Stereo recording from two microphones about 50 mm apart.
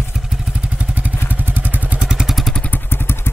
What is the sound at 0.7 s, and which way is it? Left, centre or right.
Vehicle, right.